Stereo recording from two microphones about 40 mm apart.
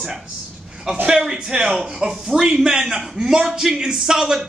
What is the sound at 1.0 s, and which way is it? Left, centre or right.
A man's voice, centre.